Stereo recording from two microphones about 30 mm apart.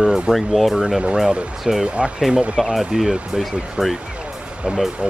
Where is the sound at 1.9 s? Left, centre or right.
Right.